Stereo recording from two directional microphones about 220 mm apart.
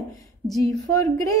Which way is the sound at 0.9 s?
15° left (ahead or behind).